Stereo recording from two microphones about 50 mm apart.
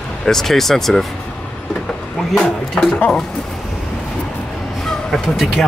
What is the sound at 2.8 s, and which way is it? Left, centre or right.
Speech, left.